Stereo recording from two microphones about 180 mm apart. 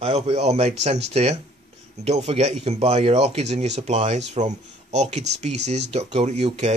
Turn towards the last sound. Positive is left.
turn(degrees=-35)  # may be behind; listen again after turning